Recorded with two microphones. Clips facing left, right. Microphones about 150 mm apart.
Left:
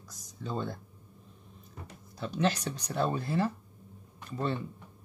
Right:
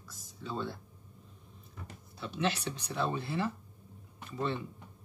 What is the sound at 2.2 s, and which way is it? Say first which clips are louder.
Speech: left 3 dB; 40° left (ahead or behind).